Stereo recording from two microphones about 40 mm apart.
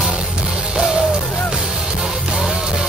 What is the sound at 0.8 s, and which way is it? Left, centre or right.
Music, centre.